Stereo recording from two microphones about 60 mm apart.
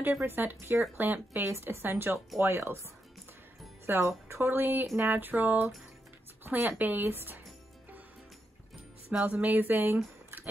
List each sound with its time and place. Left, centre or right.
0.2 s speech: right
3.8 s speech: right
9.2 s speech: right
10.3 s biting: right